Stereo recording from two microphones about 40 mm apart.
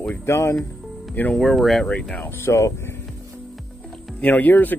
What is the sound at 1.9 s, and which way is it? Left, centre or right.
Speech, left.